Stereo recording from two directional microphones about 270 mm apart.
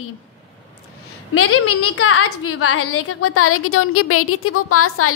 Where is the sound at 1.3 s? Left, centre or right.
Left.